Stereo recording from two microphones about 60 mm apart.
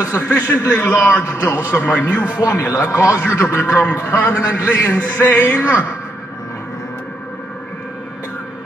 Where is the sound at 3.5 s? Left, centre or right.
Left.